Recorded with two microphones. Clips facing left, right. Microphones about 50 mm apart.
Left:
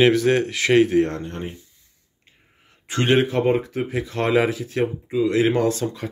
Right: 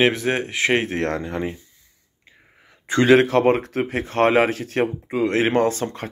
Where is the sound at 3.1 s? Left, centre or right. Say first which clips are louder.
Right 3 dB; right.